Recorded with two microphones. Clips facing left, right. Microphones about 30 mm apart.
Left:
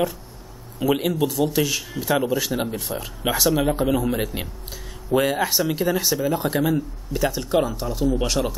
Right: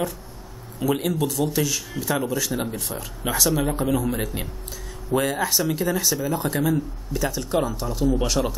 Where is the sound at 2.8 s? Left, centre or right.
Centre.